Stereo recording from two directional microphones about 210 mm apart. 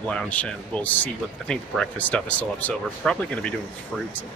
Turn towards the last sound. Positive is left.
turn(degrees=5)  # may be behind; listen again after turning